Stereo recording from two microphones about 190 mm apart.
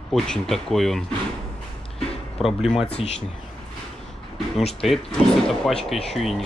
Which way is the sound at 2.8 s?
30° left (ahead or behind).